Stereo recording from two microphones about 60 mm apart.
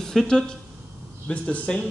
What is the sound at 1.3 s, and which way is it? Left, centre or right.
Speech, left.